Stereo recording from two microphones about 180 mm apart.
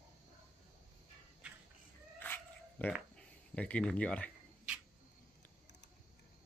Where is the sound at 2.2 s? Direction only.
10° left (ahead or behind).